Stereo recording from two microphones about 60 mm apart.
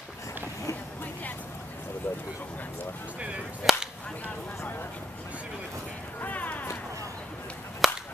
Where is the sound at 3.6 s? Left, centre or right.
Centre.